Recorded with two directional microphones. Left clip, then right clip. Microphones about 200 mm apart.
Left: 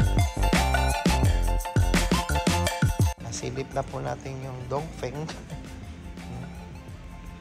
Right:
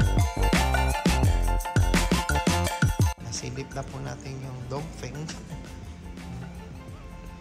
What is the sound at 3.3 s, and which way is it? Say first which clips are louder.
A man's voice: left 2 dB; 10° right (ahead or behind).